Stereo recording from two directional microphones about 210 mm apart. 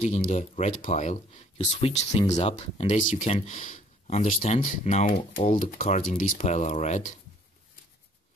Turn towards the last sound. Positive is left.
turn(degrees=35)  # may be behind; listen again after turning